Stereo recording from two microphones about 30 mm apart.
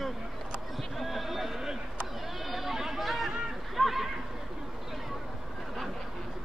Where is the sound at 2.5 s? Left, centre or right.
Centre.